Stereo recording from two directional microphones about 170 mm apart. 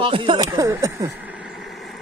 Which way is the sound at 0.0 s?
30° right (ahead or behind).